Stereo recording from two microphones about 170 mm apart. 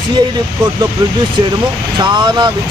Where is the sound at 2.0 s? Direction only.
25° right (ahead or behind).